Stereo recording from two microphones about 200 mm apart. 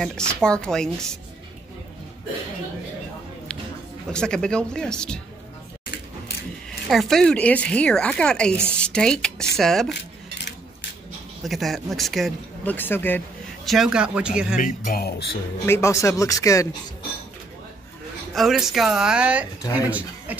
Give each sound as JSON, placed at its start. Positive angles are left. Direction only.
{"t": 0.0, "sound": "speech", "side_deg": 5}
{"t": 4.1, "sound": "speech", "side_deg": 5}
{"t": 6.9, "sound": "speech", "side_deg": 0}
{"t": 8.7, "sound": "a sound", "side_deg": 5}
{"t": 9.6, "sound": "speech", "side_deg": 0}
{"t": 11.4, "sound": "speech", "side_deg": 0}
{"t": 13.7, "sound": "speech", "side_deg": 0}
{"t": 14.6, "sound": "speech", "side_deg": 45}
{"t": 15.6, "sound": "speech", "side_deg": 15}
{"t": 18.3, "sound": "speech", "side_deg": 0}
{"t": 19.6, "sound": "speech", "side_deg": 15}
{"t": 19.9, "sound": "speech", "side_deg": -5}